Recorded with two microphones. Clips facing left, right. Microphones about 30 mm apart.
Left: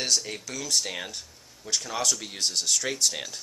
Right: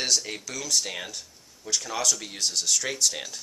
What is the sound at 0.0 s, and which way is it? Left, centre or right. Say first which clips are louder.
Speech: right 1 dB; centre.